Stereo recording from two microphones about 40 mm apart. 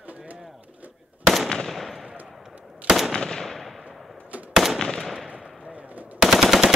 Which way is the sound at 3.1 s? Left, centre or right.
Centre.